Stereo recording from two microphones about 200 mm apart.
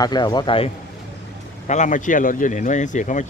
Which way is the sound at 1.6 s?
35° left (ahead or behind).